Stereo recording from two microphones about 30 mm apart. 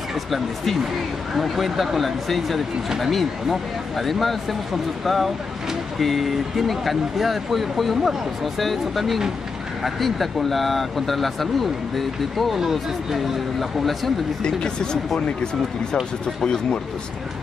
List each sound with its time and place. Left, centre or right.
1.3 s speech: centre
12.5 s speech: centre
13.6 s speech: centre
14.4 s speech: left